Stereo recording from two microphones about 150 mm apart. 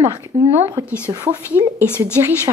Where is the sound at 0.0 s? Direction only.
15° right (ahead or behind).